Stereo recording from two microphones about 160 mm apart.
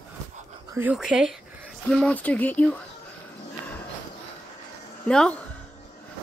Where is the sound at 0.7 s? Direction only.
10° right (ahead or behind); by 2.7 s 10° left (ahead or behind).